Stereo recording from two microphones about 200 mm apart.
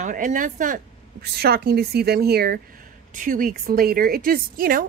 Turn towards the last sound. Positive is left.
turn(degrees=-45)  # may be behind; listen again after turning